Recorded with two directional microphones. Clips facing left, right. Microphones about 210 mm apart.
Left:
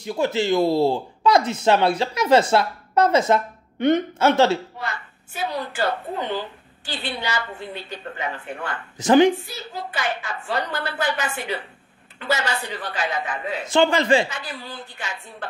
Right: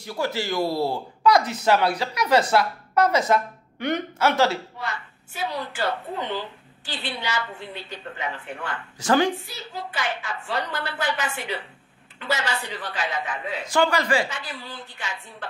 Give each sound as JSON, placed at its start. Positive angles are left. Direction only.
{"t": 0.0, "sound": "speech", "side_deg": 20}
{"t": 5.4, "sound": "a woman's voice", "side_deg": 45}
{"t": 8.9, "sound": "speech", "side_deg": 20}
{"t": 9.5, "sound": "a woman's voice", "side_deg": 45}
{"t": 13.7, "sound": "speech", "side_deg": 25}
{"t": 14.3, "sound": "a woman's voice", "side_deg": 45}